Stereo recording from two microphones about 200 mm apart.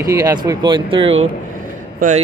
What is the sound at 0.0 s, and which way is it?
Speech, 15° right (ahead or behind).